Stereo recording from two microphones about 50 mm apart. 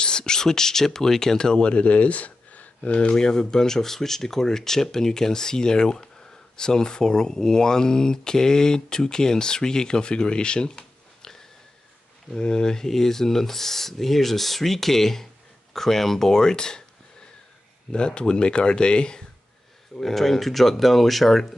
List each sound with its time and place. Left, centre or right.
0.0 s speech: centre
17.9 s speech: centre
20.0 s speech: centre